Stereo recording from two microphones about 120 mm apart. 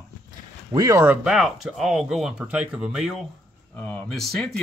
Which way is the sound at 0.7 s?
25° right (ahead or behind).